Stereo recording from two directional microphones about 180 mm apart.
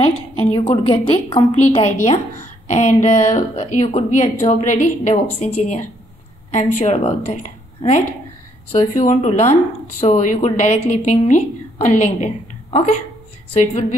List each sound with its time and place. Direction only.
0.0 s a woman's voice: 30° left (ahead or behind)
13.6 s a woman's voice: 40° left (ahead or behind)